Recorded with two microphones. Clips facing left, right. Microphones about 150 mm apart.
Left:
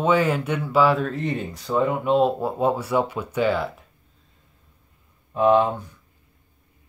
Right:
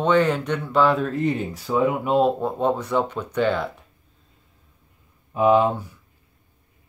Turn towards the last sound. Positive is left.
turn(degrees=-10)  # may be behind; listen again after turning